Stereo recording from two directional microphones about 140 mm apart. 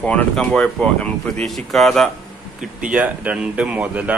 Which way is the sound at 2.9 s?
10° right (ahead or behind).